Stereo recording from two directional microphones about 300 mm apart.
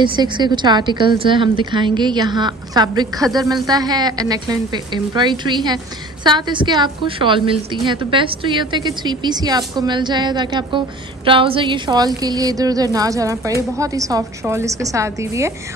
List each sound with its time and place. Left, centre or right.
0.0 s a woman's voice: centre